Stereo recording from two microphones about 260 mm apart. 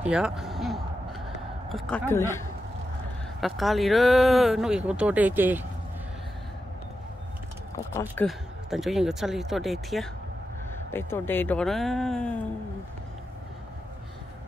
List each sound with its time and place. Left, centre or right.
0.0 s a sound: centre
1.7 s speech: centre
3.3 s speech: centre
7.9 s speech: centre